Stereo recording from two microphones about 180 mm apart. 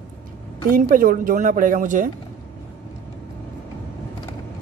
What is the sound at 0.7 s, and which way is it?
Speech, 50° right (ahead or behind).